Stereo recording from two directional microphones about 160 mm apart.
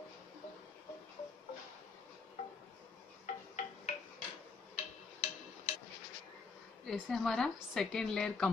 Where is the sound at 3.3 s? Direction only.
45° left (ahead or behind).